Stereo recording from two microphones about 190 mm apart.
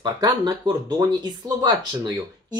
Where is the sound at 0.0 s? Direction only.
20° right (ahead or behind).